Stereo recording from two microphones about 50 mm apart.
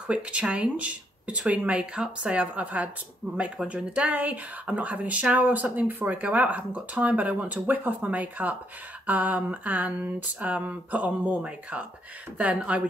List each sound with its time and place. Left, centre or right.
0.0 s speech: right